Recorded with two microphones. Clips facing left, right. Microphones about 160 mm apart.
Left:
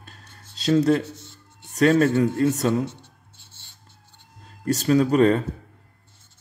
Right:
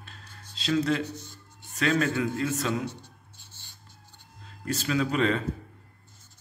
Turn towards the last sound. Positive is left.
turn(degrees=45)  # may be behind; listen again after turning